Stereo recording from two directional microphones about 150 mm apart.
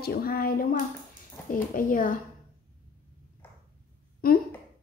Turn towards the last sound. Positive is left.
turn(degrees=80)